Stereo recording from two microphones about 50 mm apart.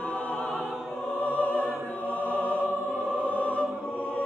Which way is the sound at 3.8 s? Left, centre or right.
Left.